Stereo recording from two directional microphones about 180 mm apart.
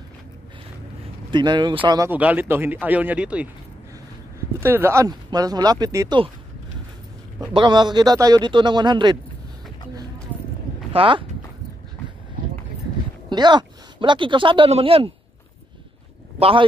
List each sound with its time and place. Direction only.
1.3 s speech: 25° right (ahead or behind)
2.0 s speech: 10° right (ahead or behind)
4.6 s speech: 15° right (ahead or behind)
7.5 s speech: 25° right (ahead or behind)
10.9 s speech: 30° right (ahead or behind)
13.3 s speech: 25° right (ahead or behind)
16.3 s speech: 30° right (ahead or behind)